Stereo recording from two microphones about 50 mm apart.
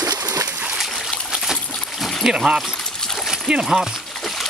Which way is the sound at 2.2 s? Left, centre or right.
Centre.